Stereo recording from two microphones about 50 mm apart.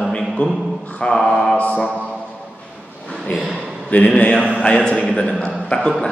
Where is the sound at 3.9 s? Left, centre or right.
Left.